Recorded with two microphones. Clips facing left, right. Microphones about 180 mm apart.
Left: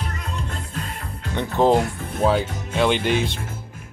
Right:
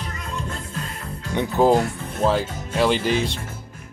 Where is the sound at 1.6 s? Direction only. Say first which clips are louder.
Even; 5° right (ahead or behind).